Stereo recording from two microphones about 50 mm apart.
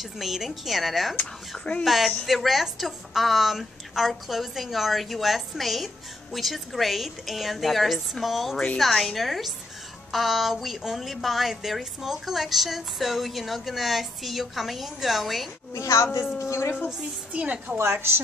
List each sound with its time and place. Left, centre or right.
0.0 s a woman's voice: centre
15.7 s a woman's voice: left
17.3 s a woman's voice: right
17.7 s a woman's voice: right